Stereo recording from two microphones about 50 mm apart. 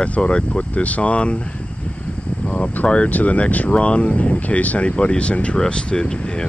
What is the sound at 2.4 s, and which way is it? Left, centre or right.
Speech, centre.